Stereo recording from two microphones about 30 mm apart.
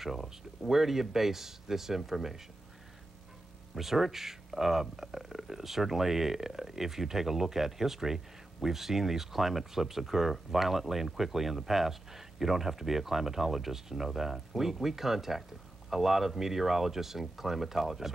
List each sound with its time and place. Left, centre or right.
0.0 s speech: centre
3.7 s speech: centre